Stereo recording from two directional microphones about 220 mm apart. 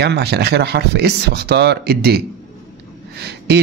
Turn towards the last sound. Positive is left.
turn(degrees=-50)  # may be behind; listen again after turning